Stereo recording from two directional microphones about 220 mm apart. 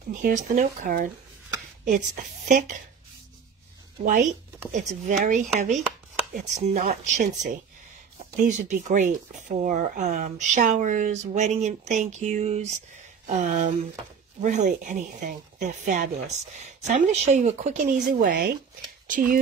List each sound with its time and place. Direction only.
0.1 s speech: 35° right (ahead or behind)
4.0 s speech: 35° right (ahead or behind)
18.1 s speech: 45° right (ahead or behind)